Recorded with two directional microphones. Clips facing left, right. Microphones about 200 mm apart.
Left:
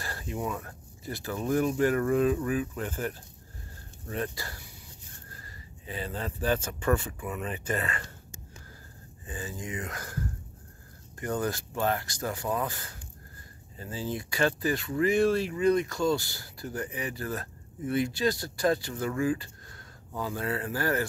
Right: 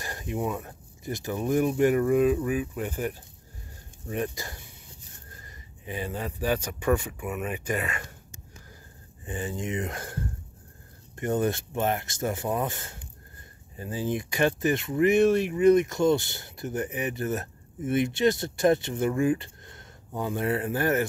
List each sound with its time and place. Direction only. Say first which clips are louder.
0.0 s speech: right 3 dB; 20° right (ahead or behind)
9.2 s speech: right 6 dB; 25° right (ahead or behind)